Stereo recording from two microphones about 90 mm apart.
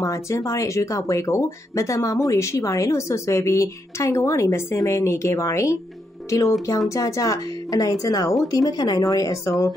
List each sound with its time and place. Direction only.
0.0 s speech: 35° left (ahead or behind)
6.9 s speech: 35° left (ahead or behind)